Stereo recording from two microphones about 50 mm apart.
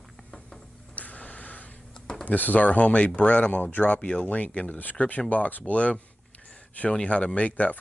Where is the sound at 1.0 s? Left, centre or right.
Left.